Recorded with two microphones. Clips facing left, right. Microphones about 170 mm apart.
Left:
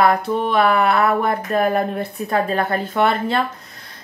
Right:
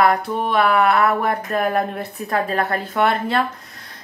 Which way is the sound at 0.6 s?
30° left (ahead or behind).